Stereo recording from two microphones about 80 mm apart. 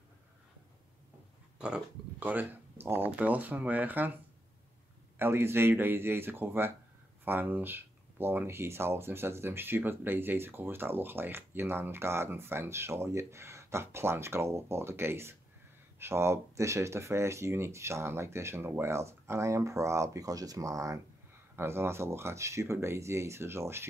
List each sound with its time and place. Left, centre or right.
1.6 s speech: centre
5.2 s speech: right
21.5 s speech: right